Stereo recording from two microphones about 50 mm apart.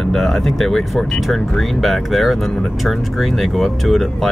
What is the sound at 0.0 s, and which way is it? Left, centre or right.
Speech, centre.